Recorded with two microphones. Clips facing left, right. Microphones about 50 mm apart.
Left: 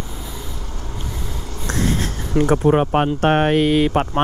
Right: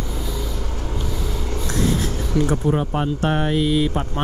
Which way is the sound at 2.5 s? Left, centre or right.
Left.